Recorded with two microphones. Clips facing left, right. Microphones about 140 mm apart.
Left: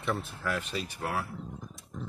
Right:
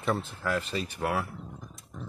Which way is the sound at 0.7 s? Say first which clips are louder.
Right 4 dB; centre (ahead or behind).